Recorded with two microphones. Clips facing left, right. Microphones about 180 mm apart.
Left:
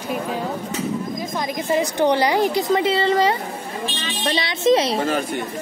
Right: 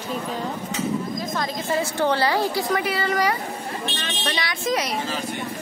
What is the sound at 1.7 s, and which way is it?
A woman's voice, 15° left (ahead or behind).